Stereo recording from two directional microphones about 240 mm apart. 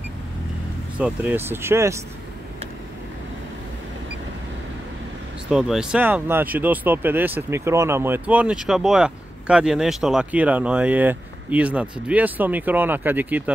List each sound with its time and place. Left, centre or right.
0.9 s speech: centre
5.5 s speech: centre